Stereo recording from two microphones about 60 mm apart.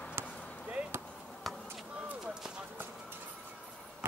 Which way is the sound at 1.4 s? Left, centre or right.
Centre.